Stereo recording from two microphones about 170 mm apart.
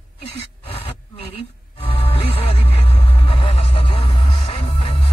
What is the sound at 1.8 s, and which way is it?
Music, 35° left (ahead or behind).